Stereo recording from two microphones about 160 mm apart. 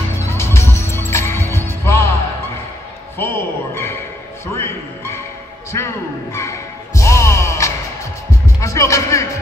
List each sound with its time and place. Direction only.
0.3 s music: 15° left (ahead or behind)
3.2 s a sound: 15° left (ahead or behind)
4.5 s music: 15° left (ahead or behind)
5.7 s a man's voice: 15° left (ahead or behind)
6.3 s music: 20° left (ahead or behind)
8.5 s speech: 20° left (ahead or behind)